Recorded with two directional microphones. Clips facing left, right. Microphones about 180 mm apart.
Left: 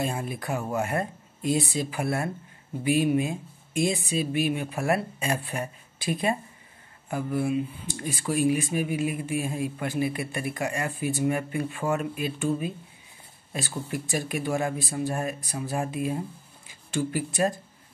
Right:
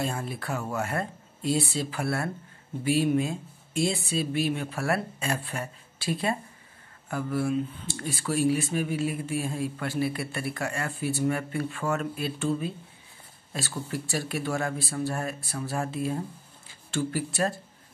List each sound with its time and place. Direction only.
0.0 s speech: 15° left (ahead or behind)